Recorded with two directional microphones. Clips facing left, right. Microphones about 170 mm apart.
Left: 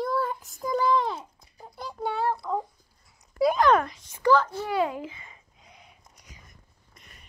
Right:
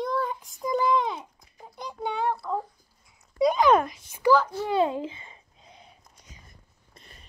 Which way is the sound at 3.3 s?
Centre (ahead or behind).